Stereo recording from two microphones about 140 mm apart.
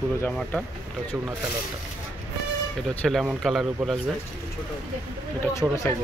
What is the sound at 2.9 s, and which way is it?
Speech, 10° left (ahead or behind).